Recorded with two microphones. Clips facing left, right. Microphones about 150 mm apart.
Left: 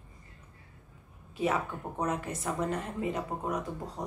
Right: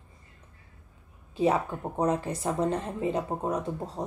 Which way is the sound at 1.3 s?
30° right (ahead or behind).